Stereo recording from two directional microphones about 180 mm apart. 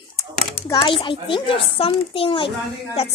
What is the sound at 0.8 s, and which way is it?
A child's voice, 30° left (ahead or behind).